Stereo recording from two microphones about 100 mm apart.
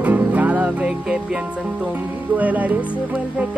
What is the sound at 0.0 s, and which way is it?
Music, 15° right (ahead or behind).